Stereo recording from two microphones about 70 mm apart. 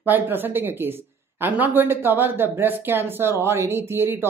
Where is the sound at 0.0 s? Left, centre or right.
Right.